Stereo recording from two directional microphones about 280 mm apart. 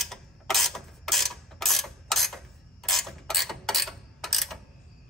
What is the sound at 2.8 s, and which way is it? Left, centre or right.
Mechanisms, centre.